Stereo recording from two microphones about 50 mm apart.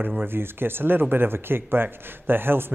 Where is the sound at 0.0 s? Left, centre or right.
Right.